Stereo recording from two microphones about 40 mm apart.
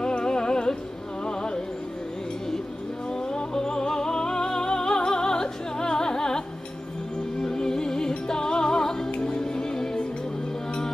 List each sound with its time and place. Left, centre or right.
0.0 s music: left
3.1 s music: centre
7.4 s music: centre